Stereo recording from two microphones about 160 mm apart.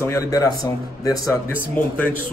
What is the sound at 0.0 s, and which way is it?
Speech, 20° left (ahead or behind).